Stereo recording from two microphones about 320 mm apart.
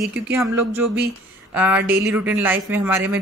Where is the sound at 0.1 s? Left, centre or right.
Centre.